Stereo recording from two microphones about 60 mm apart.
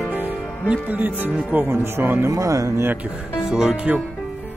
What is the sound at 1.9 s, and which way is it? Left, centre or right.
Speech, right.